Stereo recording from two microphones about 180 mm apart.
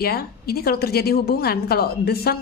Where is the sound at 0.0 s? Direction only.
60° left (ahead or behind).